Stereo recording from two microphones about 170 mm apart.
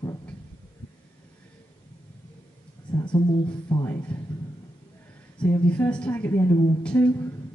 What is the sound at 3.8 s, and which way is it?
Speech, 15° left (ahead or behind).